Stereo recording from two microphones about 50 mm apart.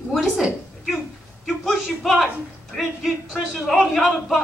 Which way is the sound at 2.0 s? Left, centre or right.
Centre.